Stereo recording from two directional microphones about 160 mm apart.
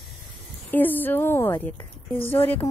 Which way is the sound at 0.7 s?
10° left (ahead or behind).